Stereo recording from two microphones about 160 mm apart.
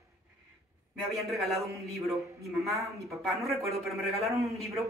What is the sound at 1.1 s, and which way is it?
A man's voice, centre (ahead or behind).